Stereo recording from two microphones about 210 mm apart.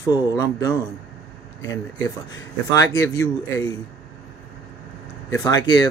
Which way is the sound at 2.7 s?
15° left (ahead or behind).